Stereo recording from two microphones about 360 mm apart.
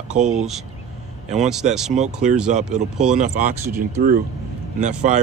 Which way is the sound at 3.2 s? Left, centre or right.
Right.